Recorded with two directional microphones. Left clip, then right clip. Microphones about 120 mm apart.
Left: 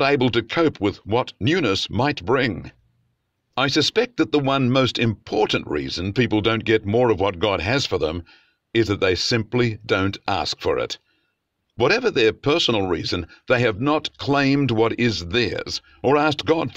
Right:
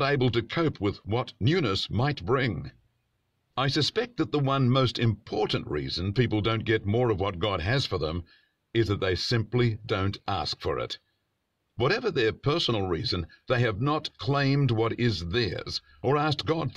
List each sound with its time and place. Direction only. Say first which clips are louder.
0.0 s speech: left 7 dB; 45° left (ahead or behind)